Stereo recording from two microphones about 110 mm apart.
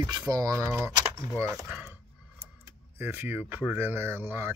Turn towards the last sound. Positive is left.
turn(degrees=-20)  # may be behind; listen again after turning